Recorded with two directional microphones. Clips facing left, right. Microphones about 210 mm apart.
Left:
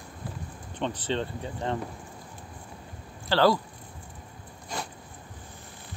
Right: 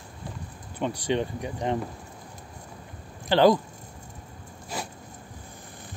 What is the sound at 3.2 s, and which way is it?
Speech, 20° right (ahead or behind).